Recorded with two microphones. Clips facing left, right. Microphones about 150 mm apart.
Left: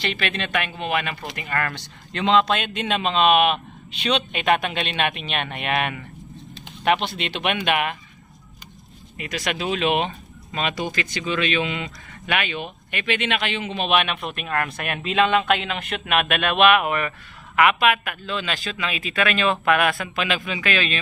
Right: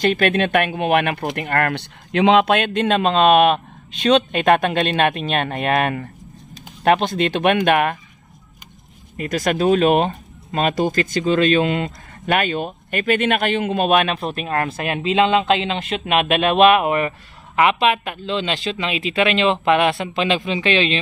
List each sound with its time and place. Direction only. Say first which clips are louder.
0.0 s speech: right 10 dB; 45° right (ahead or behind)
9.1 s speech: right 7 dB; 45° right (ahead or behind); by 21.0 s 25° right (ahead or behind)